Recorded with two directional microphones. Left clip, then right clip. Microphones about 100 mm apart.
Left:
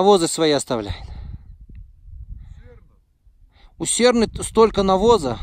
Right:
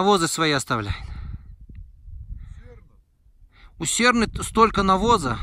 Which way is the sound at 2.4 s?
10° left (ahead or behind).